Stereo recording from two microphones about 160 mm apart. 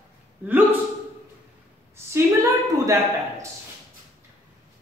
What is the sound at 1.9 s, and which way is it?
A woman's voice, 15° right (ahead or behind).